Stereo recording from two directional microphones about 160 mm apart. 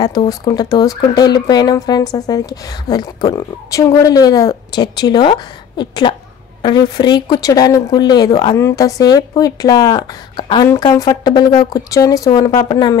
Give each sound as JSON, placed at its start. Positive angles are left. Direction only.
{"t": 0.3, "sound": "speech", "side_deg": 25}